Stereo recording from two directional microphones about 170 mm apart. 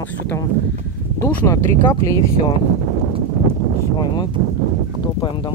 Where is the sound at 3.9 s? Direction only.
25° left (ahead or behind).